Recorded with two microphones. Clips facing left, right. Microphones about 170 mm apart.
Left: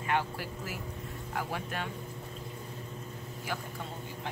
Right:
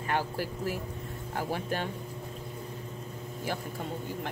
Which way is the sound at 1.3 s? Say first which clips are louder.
Right 4 dB; 35° right (ahead or behind).